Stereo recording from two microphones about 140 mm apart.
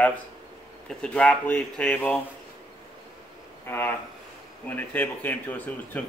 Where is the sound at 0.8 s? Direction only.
5° left (ahead or behind).